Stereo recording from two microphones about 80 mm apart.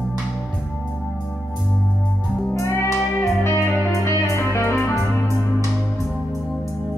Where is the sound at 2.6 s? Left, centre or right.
Left.